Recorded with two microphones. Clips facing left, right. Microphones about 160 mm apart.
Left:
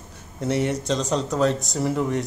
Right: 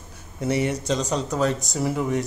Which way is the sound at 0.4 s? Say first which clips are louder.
Even; centre (ahead or behind).